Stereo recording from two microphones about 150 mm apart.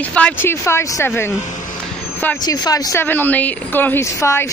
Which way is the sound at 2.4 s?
25° left (ahead or behind).